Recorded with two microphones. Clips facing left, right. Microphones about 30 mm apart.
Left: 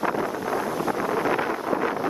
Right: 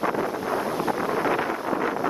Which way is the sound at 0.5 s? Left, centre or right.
Right.